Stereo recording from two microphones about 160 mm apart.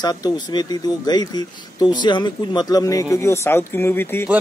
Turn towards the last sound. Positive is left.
turn(degrees=15)  # may be behind; listen again after turning